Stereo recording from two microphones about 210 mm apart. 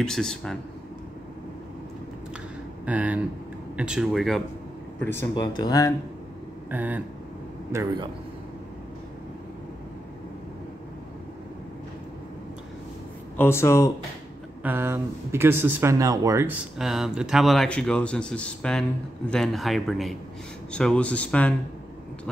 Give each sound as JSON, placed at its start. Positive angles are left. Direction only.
{"t": 0.0, "sound": "a man's voice", "side_deg": 5}
{"t": 2.8, "sound": "a man's voice", "side_deg": -5}
{"t": 5.3, "sound": "speech", "side_deg": 20}
{"t": 6.7, "sound": "speech", "side_deg": -10}
{"t": 7.7, "sound": "speech", "side_deg": -20}
{"t": 13.4, "sound": "speech", "side_deg": 10}
{"t": 14.6, "sound": "speech", "side_deg": -10}
{"t": 16.7, "sound": "a man's voice", "side_deg": 0}